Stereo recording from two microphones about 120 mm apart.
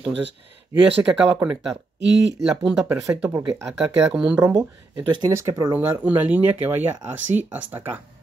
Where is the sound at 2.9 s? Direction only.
25° right (ahead or behind).